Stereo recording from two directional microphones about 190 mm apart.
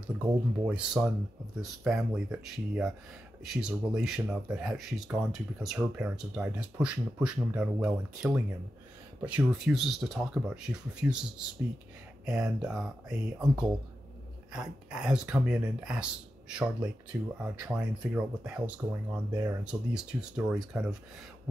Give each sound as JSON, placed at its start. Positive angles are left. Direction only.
{"t": 0.2, "sound": "speech", "side_deg": -5}
{"t": 18.8, "sound": "speech", "side_deg": -20}